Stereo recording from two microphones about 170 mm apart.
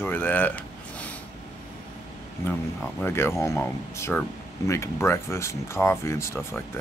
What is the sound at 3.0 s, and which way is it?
Speech, 15° left (ahead or behind).